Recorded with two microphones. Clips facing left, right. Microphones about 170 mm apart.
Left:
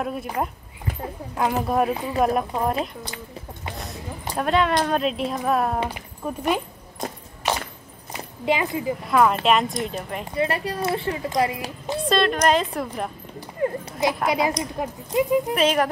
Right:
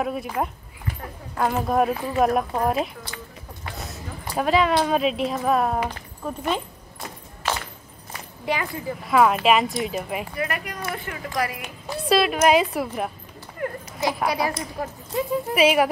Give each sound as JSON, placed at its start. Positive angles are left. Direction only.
{"t": 0.0, "sound": "speech", "side_deg": 0}
{"t": 3.7, "sound": "music", "side_deg": 0}
{"t": 4.4, "sound": "speech", "side_deg": 0}
{"t": 5.9, "sound": "speech", "side_deg": 10}
{"t": 7.4, "sound": "walk", "side_deg": 20}
{"t": 8.1, "sound": "a sound", "side_deg": 20}
{"t": 9.0, "sound": "speech", "side_deg": -5}
{"t": 10.3, "sound": "speech", "side_deg": 30}
{"t": 12.1, "sound": "a woman's voice", "side_deg": -5}
{"t": 13.6, "sound": "speech", "side_deg": 20}
{"t": 15.5, "sound": "a woman's voice", "side_deg": -10}